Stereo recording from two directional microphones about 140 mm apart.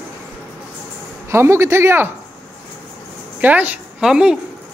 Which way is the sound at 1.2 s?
20° right (ahead or behind).